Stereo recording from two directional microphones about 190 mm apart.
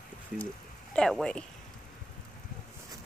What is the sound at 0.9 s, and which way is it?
Speech, 5° left (ahead or behind).